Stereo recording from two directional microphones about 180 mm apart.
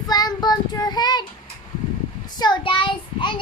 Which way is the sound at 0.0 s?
20° left (ahead or behind).